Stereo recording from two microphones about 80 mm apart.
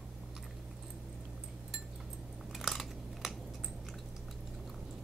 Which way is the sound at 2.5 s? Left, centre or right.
Centre.